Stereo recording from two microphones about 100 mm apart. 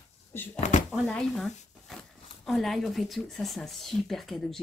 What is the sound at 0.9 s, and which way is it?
Speech, 5° left (ahead or behind).